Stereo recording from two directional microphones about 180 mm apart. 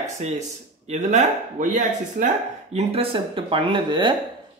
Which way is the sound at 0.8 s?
40° right (ahead or behind).